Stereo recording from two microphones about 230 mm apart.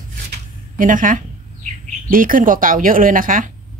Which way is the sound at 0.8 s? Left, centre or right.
Right.